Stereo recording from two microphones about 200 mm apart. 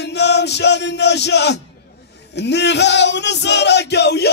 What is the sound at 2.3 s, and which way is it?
Male singing, 60° left (ahead or behind).